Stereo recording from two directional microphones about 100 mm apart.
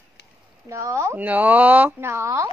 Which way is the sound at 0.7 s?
30° right (ahead or behind).